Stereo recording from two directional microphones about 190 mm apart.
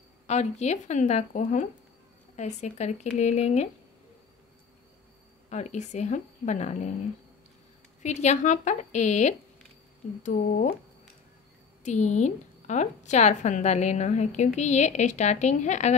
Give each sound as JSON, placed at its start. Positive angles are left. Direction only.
{"t": 0.3, "sound": "a woman's voice", "side_deg": 35}
{"t": 5.5, "sound": "a woman's voice", "side_deg": 40}
{"t": 8.0, "sound": "a woman's voice", "side_deg": 40}
{"t": 11.8, "sound": "a woman's voice", "side_deg": 40}